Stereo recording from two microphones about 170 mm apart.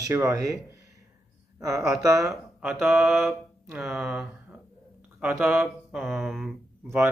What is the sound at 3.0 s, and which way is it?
Speech, centre (ahead or behind).